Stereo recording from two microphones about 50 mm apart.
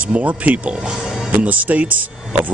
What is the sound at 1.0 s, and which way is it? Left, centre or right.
Music, centre.